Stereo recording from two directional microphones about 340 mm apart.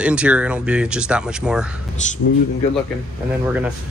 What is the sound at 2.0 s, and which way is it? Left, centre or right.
Speech, left.